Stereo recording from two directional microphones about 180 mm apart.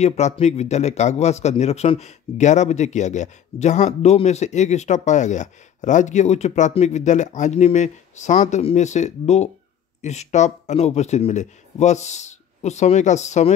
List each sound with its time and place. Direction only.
0.0 s speech: 35° left (ahead or behind)